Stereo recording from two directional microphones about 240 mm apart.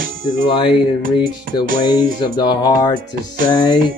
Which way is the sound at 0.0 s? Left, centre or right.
Right.